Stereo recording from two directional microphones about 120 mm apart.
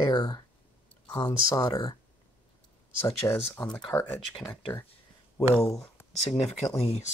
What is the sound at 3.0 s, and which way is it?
Speech, 20° left (ahead or behind).